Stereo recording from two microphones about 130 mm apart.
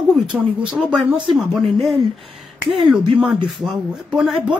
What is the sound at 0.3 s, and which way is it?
Speech, 10° right (ahead or behind).